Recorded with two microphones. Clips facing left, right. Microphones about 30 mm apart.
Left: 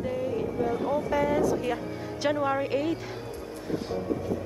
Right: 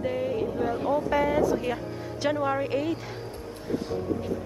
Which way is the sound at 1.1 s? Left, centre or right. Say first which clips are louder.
Right 1 dB; centre.